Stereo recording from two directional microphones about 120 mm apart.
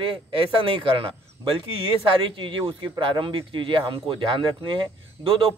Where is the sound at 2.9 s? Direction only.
40° right (ahead or behind).